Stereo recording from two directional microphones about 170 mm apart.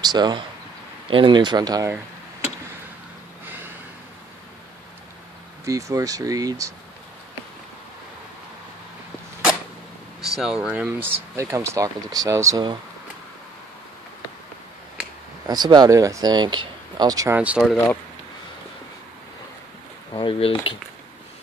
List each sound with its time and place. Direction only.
0.0 s speech: 25° right (ahead or behind)
3.4 s a sound: 10° right (ahead or behind)
5.7 s speech: 20° right (ahead or behind)
10.2 s speech: 5° right (ahead or behind); by 12.7 s 20° right (ahead or behind)
15.4 s speech: 25° right (ahead or behind)
17.4 s speech: 5° right (ahead or behind)
20.1 s speech: 30° left (ahead or behind)